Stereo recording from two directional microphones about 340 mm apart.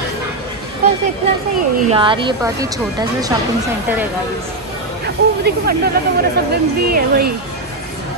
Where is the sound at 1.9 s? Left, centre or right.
Centre.